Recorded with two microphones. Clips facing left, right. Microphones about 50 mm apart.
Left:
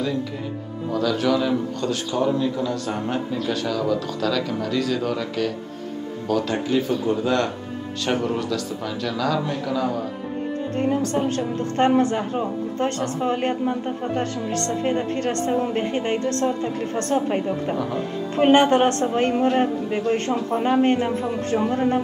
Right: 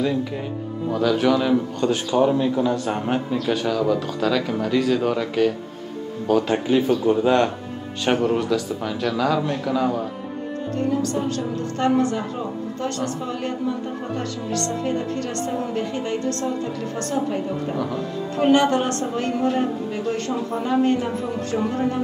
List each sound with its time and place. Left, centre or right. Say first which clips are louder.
0.0 s speech: right 2 dB; centre
10.8 s a woman's voice: left 1 dB; left